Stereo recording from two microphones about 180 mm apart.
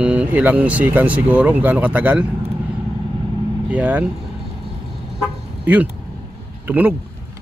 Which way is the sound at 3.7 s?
10° right (ahead or behind).